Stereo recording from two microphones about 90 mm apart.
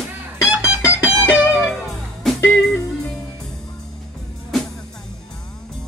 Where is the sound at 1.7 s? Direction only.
5° left (ahead or behind).